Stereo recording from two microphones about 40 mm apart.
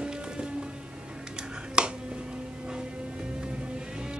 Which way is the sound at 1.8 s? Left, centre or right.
Right.